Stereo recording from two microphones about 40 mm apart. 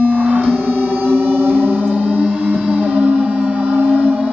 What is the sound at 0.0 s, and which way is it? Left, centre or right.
Music, right.